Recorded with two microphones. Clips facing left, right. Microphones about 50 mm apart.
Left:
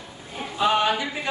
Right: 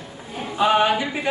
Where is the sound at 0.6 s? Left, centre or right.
Right.